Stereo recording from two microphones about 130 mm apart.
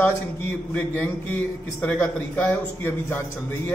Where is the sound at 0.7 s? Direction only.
15° left (ahead or behind).